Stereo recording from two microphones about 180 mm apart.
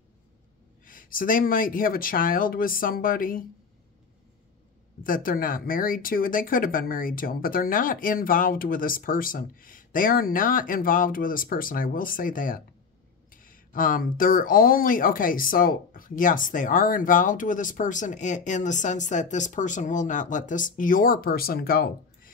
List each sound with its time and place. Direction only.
0.8 s speech: 50° left (ahead or behind)
5.0 s speech: 50° left (ahead or behind)